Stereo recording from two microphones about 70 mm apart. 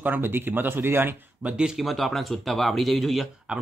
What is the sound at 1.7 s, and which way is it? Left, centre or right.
Speech, centre.